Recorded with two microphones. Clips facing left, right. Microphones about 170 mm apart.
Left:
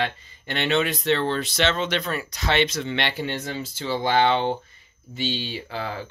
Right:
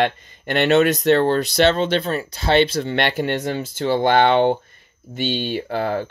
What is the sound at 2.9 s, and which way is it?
Speech, 45° right (ahead or behind).